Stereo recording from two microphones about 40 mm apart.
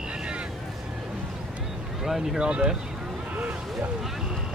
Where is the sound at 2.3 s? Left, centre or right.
Right.